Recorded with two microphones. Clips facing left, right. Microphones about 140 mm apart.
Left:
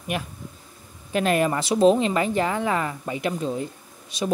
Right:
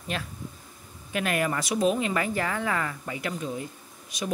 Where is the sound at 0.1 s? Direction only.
15° left (ahead or behind).